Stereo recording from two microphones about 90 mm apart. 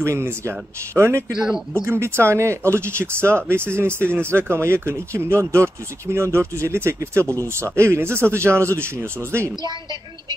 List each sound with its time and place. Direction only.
0.0 s speech: 30° right (ahead or behind)